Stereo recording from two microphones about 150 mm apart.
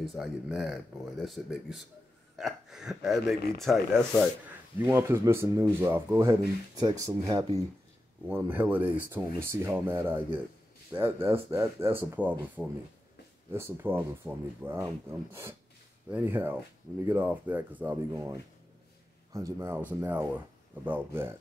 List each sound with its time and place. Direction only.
0.0 s speech: 5° right (ahead or behind)
4.7 s speech: 15° right (ahead or behind)